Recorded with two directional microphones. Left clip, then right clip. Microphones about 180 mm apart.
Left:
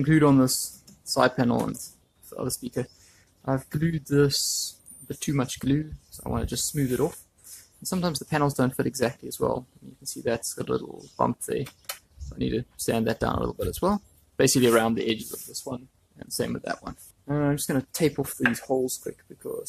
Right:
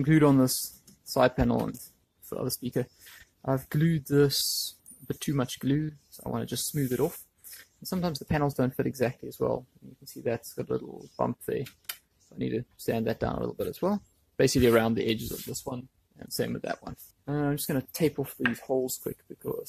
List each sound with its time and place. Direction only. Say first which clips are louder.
0.0 s speech: left 2 dB; 35° right (ahead or behind)
8.2 s speech: left 4 dB; 25° right (ahead or behind)
18.1 s speech: left 4 dB; 20° right (ahead or behind)